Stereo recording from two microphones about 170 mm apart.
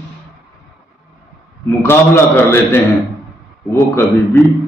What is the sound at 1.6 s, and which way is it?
A man's voice, 15° left (ahead or behind).